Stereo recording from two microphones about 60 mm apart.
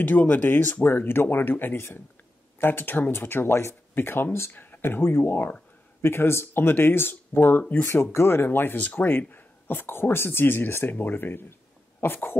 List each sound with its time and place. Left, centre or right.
0.0 s speech: left
4.5 s speech: left
8.7 s speech: left
9.3 s a sound: left
10.1 s speech: left